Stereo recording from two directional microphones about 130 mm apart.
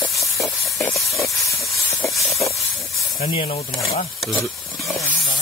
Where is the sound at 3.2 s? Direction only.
50° left (ahead or behind).